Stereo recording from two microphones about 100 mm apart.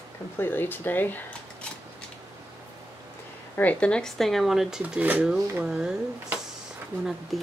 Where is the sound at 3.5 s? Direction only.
15° left (ahead or behind); by 4.8 s 5° right (ahead or behind).